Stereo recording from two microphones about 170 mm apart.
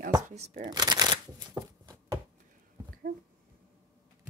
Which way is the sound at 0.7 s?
25° right (ahead or behind).